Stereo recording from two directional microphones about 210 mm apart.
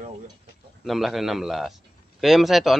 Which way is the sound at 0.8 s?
Centre (ahead or behind).